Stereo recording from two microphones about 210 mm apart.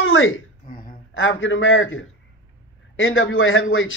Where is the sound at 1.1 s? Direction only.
65° left (ahead or behind).